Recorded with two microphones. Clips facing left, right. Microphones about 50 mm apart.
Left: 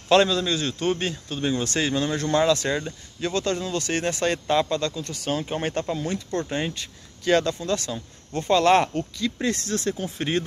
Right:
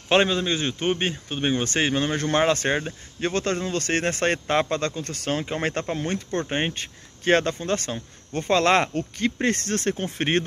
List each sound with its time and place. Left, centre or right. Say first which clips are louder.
0.1 s speech: left 1 dB; right